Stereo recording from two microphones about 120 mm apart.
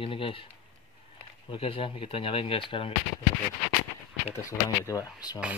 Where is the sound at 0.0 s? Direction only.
50° left (ahead or behind).